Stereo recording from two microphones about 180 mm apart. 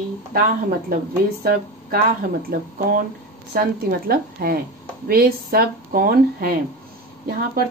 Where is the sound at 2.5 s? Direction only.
55° right (ahead or behind).